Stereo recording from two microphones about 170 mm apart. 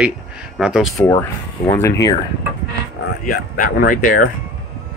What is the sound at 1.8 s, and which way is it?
Speech, 20° left (ahead or behind).